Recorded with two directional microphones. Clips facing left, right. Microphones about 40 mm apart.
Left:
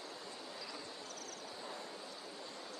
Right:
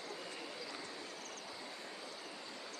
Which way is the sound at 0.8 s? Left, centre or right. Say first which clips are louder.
Right 1 dB; right.